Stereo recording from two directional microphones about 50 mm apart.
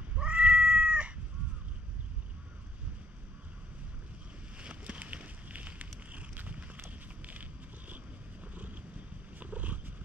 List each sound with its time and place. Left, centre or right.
0.1 s cat: right
4.6 s a sound: right
9.4 s wild animals: right